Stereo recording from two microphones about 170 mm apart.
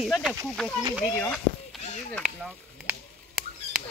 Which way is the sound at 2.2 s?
5° right (ahead or behind).